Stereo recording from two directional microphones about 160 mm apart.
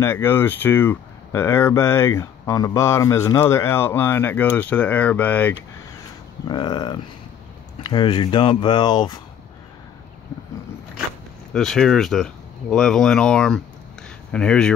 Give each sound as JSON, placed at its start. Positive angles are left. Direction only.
{"t": 0.0, "sound": "speech", "side_deg": 15}
{"t": 6.4, "sound": "speech", "side_deg": 25}
{"t": 11.5, "sound": "speech", "side_deg": 5}